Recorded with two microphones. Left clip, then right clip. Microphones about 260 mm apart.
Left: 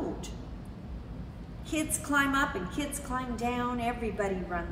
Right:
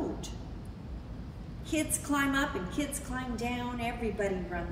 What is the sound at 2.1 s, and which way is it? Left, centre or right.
A woman's voice, centre.